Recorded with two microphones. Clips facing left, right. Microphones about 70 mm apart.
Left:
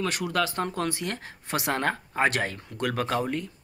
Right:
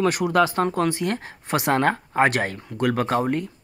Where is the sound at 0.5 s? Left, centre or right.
Right.